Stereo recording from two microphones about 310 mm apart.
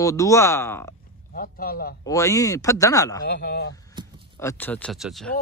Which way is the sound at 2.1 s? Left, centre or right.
Centre.